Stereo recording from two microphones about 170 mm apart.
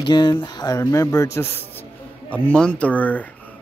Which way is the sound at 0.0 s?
25° left (ahead or behind).